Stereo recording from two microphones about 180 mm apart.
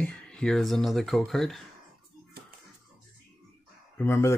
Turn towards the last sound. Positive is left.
turn(degrees=15)  # may be behind; listen again after turning